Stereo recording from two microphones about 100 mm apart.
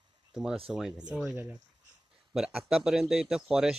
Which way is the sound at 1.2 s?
20° right (ahead or behind).